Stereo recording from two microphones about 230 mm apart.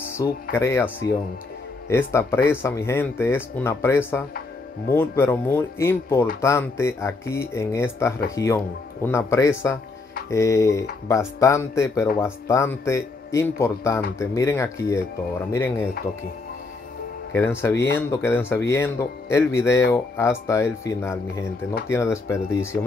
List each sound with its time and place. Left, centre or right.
0.2 s speech: centre
1.9 s speech: centre
17.3 s speech: centre